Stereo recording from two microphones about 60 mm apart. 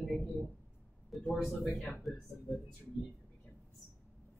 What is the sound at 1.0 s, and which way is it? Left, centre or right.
Speech, centre.